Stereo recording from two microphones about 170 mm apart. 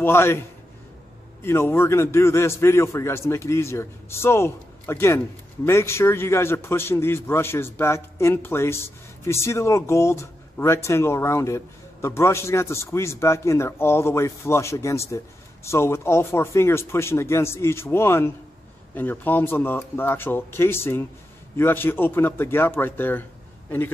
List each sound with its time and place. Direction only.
0.0 s a man's voice: 15° left (ahead or behind)